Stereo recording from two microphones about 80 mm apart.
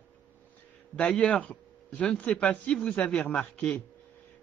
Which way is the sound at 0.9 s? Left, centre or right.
Centre.